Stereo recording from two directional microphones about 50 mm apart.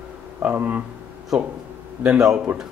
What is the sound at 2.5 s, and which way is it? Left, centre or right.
Speech, right.